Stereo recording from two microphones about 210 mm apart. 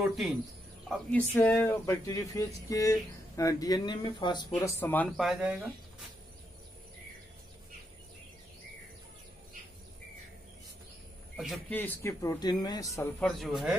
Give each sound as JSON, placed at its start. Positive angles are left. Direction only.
{"t": 0.0, "sound": "speech", "side_deg": 0}
{"t": 11.3, "sound": "speech", "side_deg": 0}
{"t": 13.2, "sound": "speech", "side_deg": 0}